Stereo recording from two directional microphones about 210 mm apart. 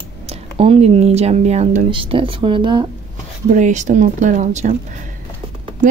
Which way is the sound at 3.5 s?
35° right (ahead or behind).